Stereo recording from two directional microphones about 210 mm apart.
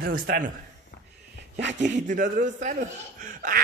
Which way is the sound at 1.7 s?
35° right (ahead or behind).